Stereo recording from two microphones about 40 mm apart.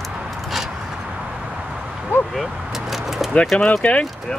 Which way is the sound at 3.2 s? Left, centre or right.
Centre.